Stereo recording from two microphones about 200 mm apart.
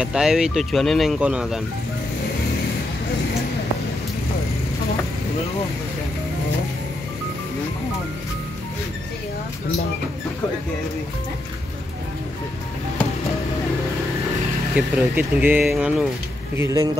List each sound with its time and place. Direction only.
0.0 s speech: 5° right (ahead or behind)
14.8 s speech: 5° right (ahead or behind)
16.5 s speech: 15° right (ahead or behind)